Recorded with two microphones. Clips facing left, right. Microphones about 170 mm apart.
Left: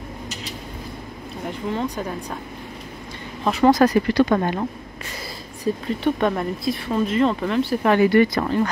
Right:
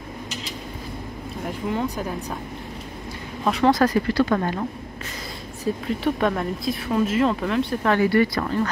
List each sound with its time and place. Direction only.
1.7 s speech: 5° right (ahead or behind)
3.4 s speech: centre (ahead or behind)
3.7 s speech: 20° left (ahead or behind)
5.7 s speech: centre (ahead or behind)
7.8 s speech: 15° left (ahead or behind)